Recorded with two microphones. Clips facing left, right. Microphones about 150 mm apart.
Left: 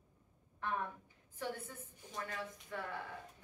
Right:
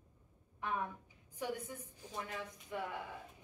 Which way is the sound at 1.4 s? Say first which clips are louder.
Right 2 dB; 15° right (ahead or behind).